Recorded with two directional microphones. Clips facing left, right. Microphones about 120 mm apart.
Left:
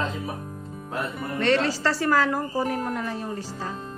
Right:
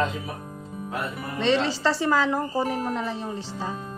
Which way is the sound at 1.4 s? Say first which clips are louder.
Even; 20° right (ahead or behind).